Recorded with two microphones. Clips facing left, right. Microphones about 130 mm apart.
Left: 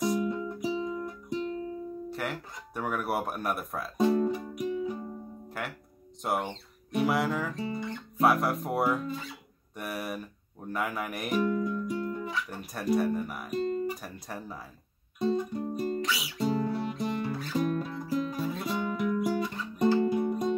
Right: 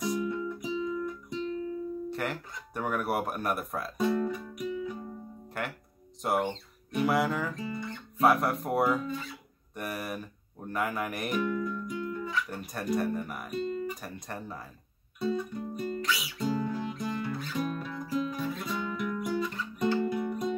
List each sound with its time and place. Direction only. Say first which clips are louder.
0.2 s music: left 2 dB; 30° left (ahead or behind)
2.0 s speech: right 1 dB; centre (ahead or behind)
4.0 s music: left 4 dB; 30° left (ahead or behind)
5.6 s speech: right 2 dB; centre (ahead or behind)
7.5 s guitar: left 2 dB; 30° left (ahead or behind)
8.2 s speech: even; centre (ahead or behind)
11.4 s music: left 3 dB; 35° left (ahead or behind)
12.4 s speech: left 3 dB; centre (ahead or behind)
13.6 s guitar: left 3 dB; 40° left (ahead or behind)
14.0 s speech: even; centre (ahead or behind)
15.1 s music: left 3 dB; 35° left (ahead or behind)